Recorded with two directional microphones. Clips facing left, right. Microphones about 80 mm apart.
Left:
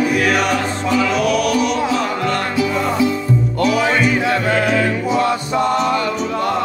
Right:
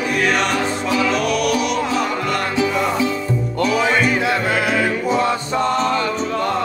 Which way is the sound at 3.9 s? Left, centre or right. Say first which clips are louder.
Left 1 dB; centre.